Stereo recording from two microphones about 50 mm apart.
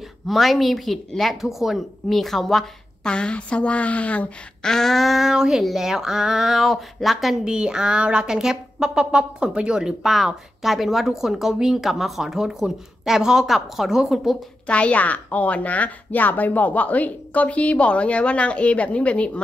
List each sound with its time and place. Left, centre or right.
0.3 s a woman's voice: centre
2.1 s a woman's voice: centre
3.1 s a woman's voice: centre
4.6 s a woman's voice: centre
7.4 s a woman's voice: centre
10.1 s a woman's voice: centre
14.7 s a woman's voice: left